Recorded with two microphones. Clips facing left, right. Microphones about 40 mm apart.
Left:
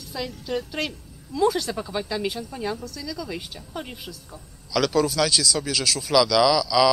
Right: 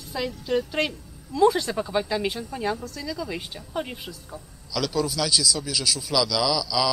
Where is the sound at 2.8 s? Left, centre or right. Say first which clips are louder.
Right 1 dB; centre.